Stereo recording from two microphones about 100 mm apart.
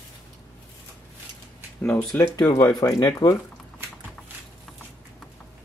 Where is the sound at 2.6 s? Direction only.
40° left (ahead or behind).